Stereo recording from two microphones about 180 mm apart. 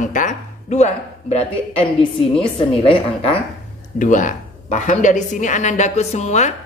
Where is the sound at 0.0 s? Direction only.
45° left (ahead or behind).